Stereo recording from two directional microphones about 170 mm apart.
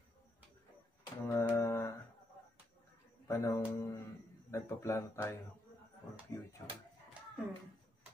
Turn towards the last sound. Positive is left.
turn(degrees=-5)  # may be behind; listen again after turning